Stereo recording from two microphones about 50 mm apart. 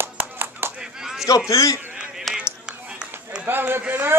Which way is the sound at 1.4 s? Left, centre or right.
Left.